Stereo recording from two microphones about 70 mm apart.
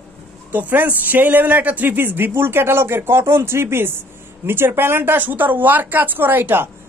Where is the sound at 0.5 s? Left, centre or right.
Right.